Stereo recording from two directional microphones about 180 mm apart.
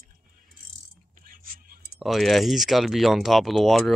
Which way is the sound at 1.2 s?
50° right (ahead or behind).